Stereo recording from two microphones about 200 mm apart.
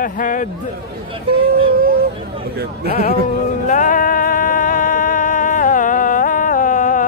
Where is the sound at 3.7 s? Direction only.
40° left (ahead or behind).